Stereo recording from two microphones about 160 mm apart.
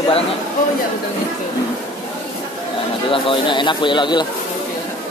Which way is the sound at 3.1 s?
30° left (ahead or behind).